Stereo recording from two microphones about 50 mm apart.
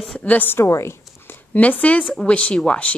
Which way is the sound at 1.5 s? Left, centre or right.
Left.